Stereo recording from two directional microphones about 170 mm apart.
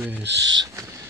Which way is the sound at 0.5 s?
20° right (ahead or behind).